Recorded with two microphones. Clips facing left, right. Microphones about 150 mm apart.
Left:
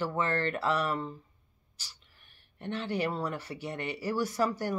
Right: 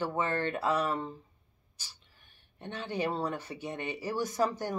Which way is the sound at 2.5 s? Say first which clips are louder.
Left 2 dB; 20° right (ahead or behind).